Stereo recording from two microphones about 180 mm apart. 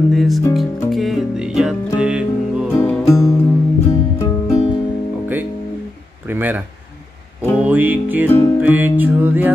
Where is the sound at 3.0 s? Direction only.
15° left (ahead or behind).